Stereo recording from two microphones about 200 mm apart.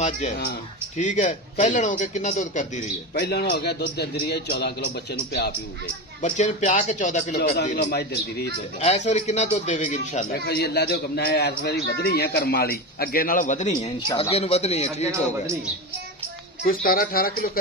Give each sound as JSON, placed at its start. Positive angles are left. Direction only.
{"t": 0.9, "sound": "a man's voice", "side_deg": 35}
{"t": 3.2, "sound": "a man's voice", "side_deg": 55}
{"t": 6.2, "sound": "a man's voice", "side_deg": 35}
{"t": 7.3, "sound": "a man's voice", "side_deg": 55}
{"t": 8.8, "sound": "a man's voice", "side_deg": 35}
{"t": 10.3, "sound": "a man's voice", "side_deg": 50}
{"t": 13.8, "sound": "a man's voice", "side_deg": 25}
{"t": 16.6, "sound": "a man's voice", "side_deg": 45}